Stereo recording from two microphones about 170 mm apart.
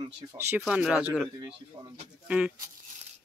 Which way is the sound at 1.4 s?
30° right (ahead or behind).